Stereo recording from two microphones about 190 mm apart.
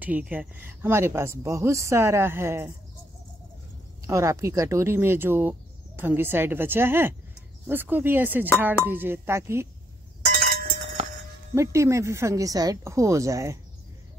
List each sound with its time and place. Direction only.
0.0 s speech: 10° right (ahead or behind)
4.0 s speech: 15° right (ahead or behind)
11.5 s speech: 15° right (ahead or behind)